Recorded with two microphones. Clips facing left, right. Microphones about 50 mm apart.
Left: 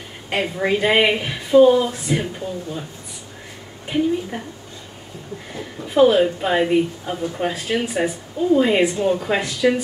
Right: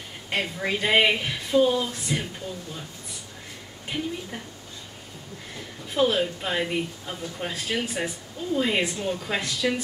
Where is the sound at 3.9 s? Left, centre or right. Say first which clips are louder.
Left 10 dB; left.